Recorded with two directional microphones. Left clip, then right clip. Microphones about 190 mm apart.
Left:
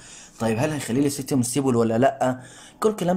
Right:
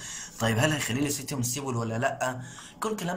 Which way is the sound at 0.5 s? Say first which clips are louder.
Left 3 dB; 25° left (ahead or behind).